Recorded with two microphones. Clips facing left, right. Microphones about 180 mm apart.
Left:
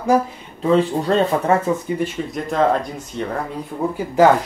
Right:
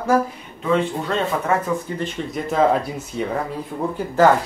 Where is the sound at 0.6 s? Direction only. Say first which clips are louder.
Left 4 dB; 35° left (ahead or behind).